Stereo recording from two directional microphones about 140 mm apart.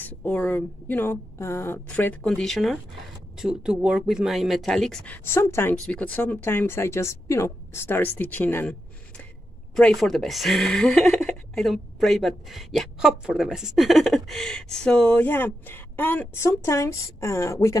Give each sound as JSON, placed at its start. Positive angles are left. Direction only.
{"t": 0.0, "sound": "speech", "side_deg": 10}